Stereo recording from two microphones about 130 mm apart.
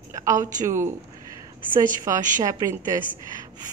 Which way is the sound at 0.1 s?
25° right (ahead or behind).